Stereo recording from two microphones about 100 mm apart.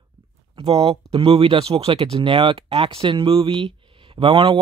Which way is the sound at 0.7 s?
80° right.